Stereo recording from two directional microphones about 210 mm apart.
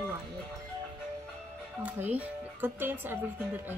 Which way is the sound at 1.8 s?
10° right (ahead or behind).